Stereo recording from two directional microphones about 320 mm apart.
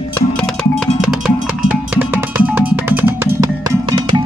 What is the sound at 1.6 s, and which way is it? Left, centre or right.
Music, centre.